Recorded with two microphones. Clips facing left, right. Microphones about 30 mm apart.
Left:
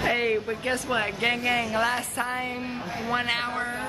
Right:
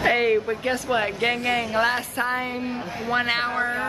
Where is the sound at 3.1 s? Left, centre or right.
Centre.